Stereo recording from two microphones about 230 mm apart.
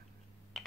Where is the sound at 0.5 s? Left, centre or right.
Centre.